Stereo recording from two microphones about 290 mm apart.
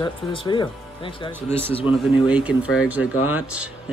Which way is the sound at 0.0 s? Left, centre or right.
Centre.